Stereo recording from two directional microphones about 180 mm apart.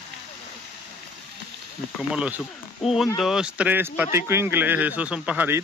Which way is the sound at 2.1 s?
5° right (ahead or behind).